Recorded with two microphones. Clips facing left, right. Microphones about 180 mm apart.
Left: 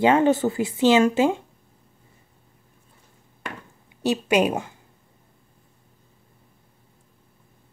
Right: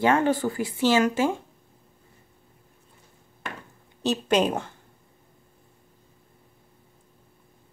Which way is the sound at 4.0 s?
10° left (ahead or behind).